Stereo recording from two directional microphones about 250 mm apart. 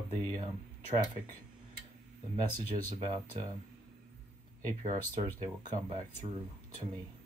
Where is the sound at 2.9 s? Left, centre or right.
Centre.